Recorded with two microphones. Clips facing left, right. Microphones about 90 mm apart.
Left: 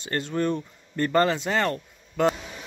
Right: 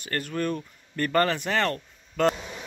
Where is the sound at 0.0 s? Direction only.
25° left (ahead or behind).